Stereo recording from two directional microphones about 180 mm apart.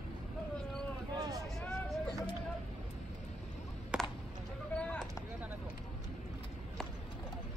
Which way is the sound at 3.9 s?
5° right (ahead or behind).